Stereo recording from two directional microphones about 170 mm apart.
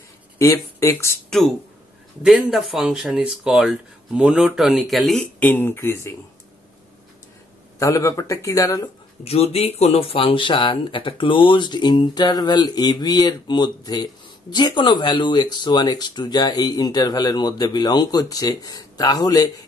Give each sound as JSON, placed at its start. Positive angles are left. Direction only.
{"t": 0.4, "sound": "speech", "side_deg": 15}
{"t": 2.2, "sound": "speech", "side_deg": 0}
{"t": 7.8, "sound": "speech", "side_deg": 20}
{"t": 9.2, "sound": "speech", "side_deg": 35}